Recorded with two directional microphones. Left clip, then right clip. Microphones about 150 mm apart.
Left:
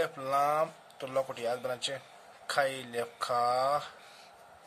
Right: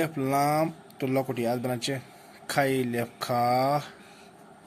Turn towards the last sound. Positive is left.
turn(degrees=-15)  # may be behind; listen again after turning